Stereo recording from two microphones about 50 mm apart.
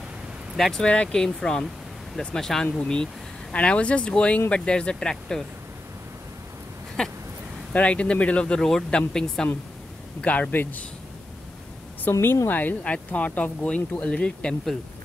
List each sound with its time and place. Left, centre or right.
0.6 s speech: centre
0.8 s speech: left
1.1 s speech: centre
7.0 s speech: centre
7.7 s speech: left
8.5 s speech: centre
10.2 s speech: left
10.5 s a man's voice: left
12.1 s speech: left
12.4 s speech: left; by 14.5 s centre